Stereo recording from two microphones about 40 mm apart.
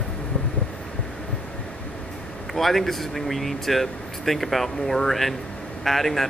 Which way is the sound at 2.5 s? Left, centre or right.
Centre.